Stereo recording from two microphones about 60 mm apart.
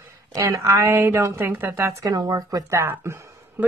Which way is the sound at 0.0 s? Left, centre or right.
Right.